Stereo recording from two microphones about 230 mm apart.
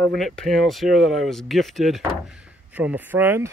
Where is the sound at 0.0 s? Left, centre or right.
Centre.